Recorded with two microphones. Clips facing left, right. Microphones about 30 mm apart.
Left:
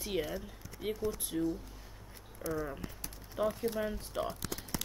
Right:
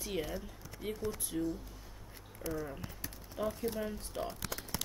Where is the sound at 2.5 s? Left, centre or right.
Centre.